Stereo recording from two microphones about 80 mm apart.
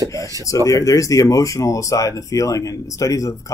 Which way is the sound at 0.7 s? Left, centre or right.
Left.